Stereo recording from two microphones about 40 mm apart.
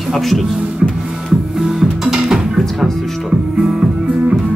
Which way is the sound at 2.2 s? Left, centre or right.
Centre.